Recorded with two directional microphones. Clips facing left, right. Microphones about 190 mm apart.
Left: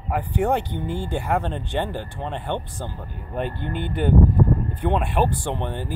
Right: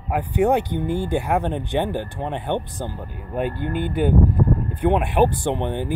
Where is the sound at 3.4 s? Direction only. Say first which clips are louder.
Right 4 dB; 45° right (ahead or behind).